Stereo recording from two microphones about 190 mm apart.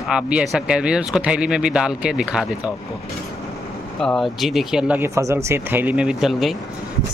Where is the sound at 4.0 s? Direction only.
Centre (ahead or behind).